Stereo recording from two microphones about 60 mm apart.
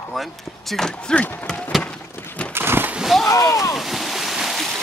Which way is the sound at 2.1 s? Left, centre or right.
Left.